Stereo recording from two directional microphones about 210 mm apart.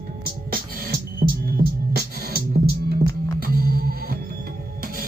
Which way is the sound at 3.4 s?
45° right (ahead or behind).